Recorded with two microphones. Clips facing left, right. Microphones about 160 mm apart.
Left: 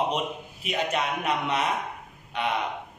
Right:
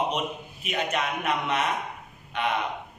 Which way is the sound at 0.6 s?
30° left (ahead or behind).